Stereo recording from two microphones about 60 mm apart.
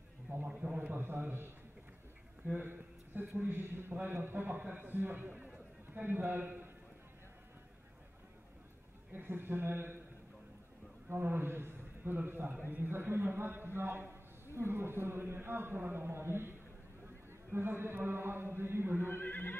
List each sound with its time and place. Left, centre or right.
0.5 s a man's voice: centre
0.7 s a man's voice: right
9.1 s a man's voice: right
11.1 s a man's voice: right
19.0 s speech: left